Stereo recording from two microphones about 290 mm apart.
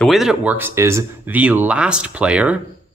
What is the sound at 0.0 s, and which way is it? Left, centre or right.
Speech, centre.